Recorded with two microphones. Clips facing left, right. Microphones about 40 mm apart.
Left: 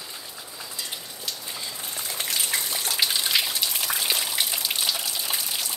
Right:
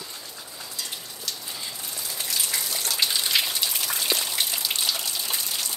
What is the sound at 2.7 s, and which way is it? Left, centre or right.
Water, centre.